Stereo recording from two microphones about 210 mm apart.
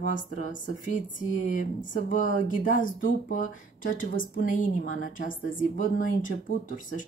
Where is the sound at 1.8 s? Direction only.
40° left (ahead or behind).